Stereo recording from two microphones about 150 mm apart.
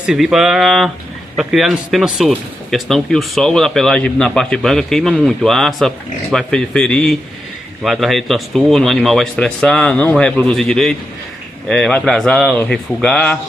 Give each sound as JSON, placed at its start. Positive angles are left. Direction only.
{"t": 0.0, "sound": "speech", "side_deg": -5}